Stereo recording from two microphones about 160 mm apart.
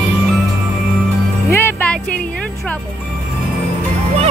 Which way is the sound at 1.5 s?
10° left (ahead or behind).